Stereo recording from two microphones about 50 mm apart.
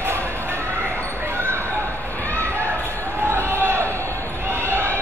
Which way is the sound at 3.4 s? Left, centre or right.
Right.